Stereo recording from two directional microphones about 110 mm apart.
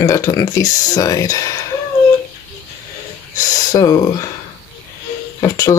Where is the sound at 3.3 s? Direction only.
30° left (ahead or behind).